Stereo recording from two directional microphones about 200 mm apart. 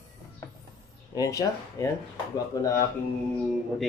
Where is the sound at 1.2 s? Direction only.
15° left (ahead or behind).